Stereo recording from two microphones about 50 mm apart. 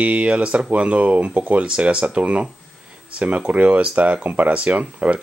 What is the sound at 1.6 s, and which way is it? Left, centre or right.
Speech, right.